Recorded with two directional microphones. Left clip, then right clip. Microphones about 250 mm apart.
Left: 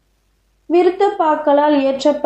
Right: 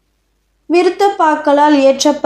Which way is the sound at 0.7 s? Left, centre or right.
Right.